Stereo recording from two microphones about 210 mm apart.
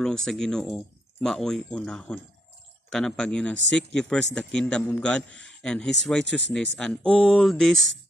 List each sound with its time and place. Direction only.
0.0 s speech: centre (ahead or behind)
6.2 s speech: 55° right (ahead or behind)
6.8 s speech: 5° left (ahead or behind)